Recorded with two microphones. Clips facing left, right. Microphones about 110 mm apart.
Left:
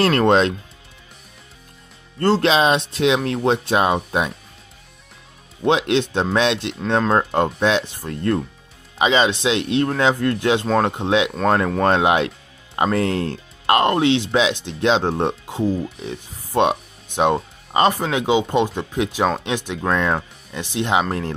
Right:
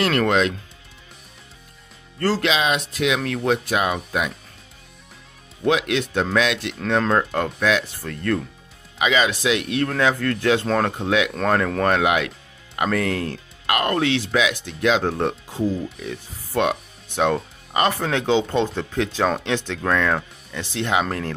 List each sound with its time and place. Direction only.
0.0 s speech: 30° left (ahead or behind)
2.1 s speech: 25° left (ahead or behind)
5.6 s speech: 25° left (ahead or behind)